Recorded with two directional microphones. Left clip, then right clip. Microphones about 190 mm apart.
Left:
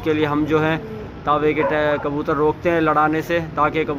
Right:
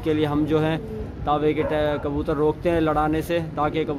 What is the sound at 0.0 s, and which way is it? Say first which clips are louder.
Speech: left 3 dB; 10° right (ahead or behind).